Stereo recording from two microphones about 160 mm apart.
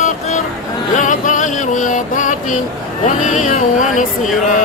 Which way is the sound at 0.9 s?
50° left (ahead or behind).